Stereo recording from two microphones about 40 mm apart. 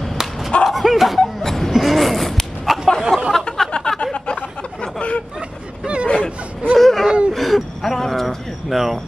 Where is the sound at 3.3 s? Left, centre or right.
Centre.